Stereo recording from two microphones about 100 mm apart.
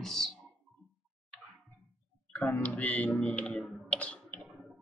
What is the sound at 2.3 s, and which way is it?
Speech, 10° left (ahead or behind).